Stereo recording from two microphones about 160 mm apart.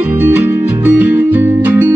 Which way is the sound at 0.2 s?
10° right (ahead or behind).